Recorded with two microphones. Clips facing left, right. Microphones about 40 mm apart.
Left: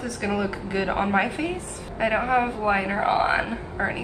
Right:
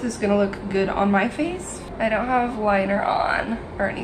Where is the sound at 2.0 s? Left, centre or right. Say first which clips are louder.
Right 1 dB; centre.